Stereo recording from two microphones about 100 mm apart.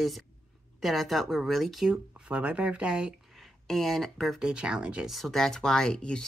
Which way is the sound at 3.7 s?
5° left (ahead or behind).